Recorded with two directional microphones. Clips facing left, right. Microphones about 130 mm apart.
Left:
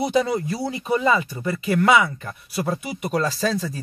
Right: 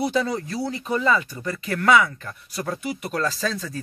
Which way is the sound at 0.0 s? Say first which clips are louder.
Left 3 dB; 15° left (ahead or behind).